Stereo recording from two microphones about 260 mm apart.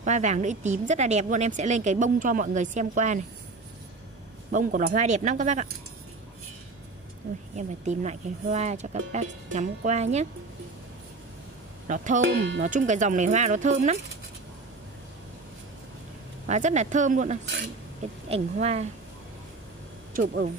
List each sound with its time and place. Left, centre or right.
0.0 s a woman's voice: right
4.5 s a woman's voice: right
7.5 s a woman's voice: right
11.9 s a woman's voice: right
12.2 s speech: right
12.6 s a woman's voice: right
16.4 s a woman's voice: right